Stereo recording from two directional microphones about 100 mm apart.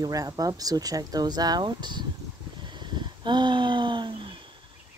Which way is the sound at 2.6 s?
50° right (ahead or behind).